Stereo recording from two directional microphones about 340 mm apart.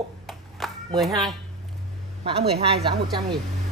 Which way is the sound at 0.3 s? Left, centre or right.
Centre.